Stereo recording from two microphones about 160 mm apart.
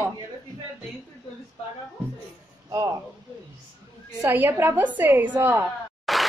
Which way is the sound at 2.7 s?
20° right (ahead or behind).